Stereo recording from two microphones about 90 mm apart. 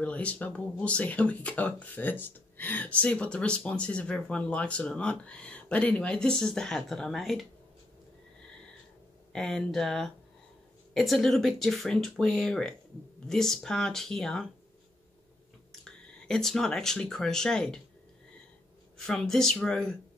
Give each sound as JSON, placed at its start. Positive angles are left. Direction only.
{"t": 0.0, "sound": "speech", "side_deg": 15}
{"t": 9.3, "sound": "speech", "side_deg": 5}
{"t": 15.8, "sound": "speech", "side_deg": 5}
{"t": 18.9, "sound": "speech", "side_deg": 5}